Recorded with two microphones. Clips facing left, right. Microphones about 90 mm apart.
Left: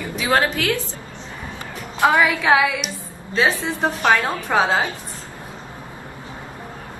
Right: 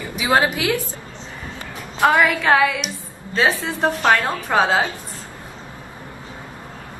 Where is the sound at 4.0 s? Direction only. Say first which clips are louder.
Even; 15° left (ahead or behind).